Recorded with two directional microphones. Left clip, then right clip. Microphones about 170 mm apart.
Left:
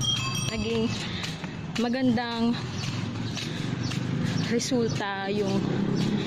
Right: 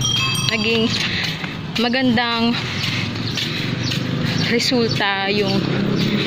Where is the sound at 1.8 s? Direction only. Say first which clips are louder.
Right 9 dB; 10° left (ahead or behind).